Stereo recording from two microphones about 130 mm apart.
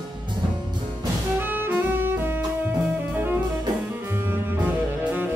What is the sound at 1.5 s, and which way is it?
Music, 15° right (ahead or behind).